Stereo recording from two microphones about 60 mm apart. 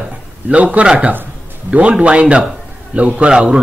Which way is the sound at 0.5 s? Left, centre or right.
Right.